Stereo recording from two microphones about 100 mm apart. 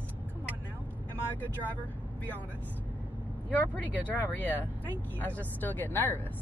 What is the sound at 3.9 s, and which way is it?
Speech, 15° left (ahead or behind).